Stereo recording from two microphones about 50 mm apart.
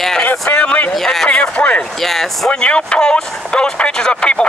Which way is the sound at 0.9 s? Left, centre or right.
Centre.